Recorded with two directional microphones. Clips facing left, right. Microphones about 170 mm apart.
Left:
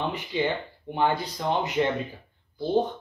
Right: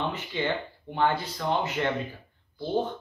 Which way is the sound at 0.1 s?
15° left (ahead or behind).